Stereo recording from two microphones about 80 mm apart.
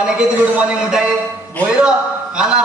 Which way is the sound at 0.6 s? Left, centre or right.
Centre.